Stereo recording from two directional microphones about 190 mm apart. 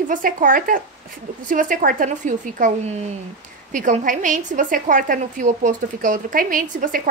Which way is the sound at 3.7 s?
40° right (ahead or behind).